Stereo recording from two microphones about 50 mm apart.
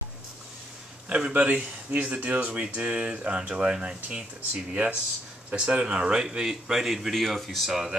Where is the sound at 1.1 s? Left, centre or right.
Right.